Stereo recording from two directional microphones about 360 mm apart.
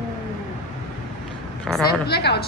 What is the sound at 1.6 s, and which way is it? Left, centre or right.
Speech, centre.